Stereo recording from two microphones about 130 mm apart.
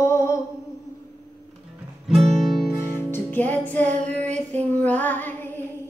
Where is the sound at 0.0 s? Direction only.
20° left (ahead or behind).